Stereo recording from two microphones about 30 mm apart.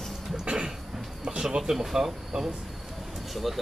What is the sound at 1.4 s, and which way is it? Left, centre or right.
Speech, right.